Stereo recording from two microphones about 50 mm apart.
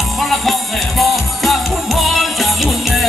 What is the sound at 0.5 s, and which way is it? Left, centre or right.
Music, centre.